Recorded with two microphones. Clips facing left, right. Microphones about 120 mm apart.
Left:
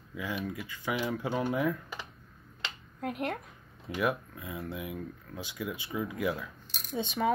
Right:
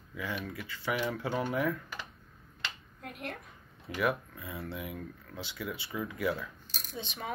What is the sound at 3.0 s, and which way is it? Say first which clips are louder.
Speech: left 8 dB; 90° left.